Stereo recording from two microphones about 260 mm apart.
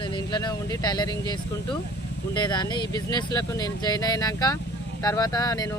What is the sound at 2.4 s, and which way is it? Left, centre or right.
Speech, centre.